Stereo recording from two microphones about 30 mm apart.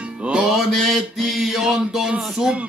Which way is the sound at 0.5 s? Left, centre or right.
Centre.